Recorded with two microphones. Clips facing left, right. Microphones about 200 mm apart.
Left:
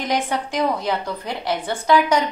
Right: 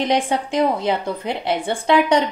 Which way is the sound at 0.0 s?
25° right (ahead or behind).